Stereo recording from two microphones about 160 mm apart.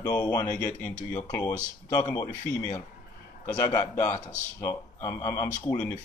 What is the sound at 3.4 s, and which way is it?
A man's voice, 20° left (ahead or behind).